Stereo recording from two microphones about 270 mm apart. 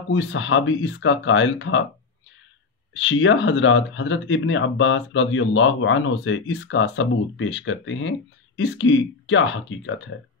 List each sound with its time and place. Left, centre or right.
0.1 s speech: left
2.9 s speech: left